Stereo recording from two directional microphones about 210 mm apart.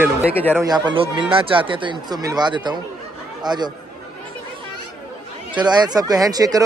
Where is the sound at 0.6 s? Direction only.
20° right (ahead or behind).